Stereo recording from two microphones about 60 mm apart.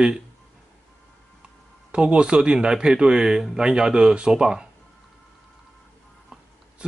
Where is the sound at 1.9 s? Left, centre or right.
Centre.